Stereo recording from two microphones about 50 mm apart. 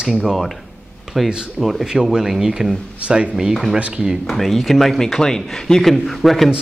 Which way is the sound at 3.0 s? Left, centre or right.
Right.